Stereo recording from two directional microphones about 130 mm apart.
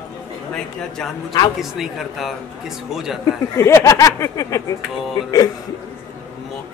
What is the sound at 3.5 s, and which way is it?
Speech, 20° left (ahead or behind).